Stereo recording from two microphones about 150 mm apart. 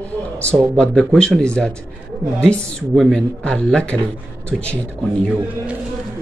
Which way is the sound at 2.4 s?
Centre (ahead or behind).